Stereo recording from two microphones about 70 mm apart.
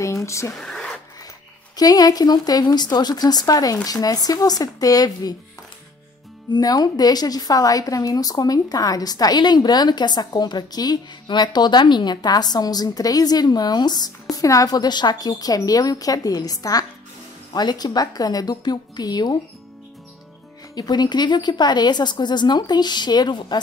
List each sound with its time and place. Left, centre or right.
0.0 s speech: left
0.6 s a sound: centre
1.8 s speech: left
6.5 s speech: left
14.3 s speech: left
17.6 s speech: left
20.7 s a woman's voice: left